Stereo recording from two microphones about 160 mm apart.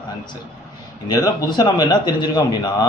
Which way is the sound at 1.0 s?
20° left (ahead or behind).